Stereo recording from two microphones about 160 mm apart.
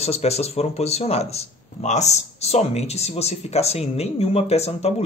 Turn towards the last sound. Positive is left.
turn(degrees=40)  # may be behind; listen again after turning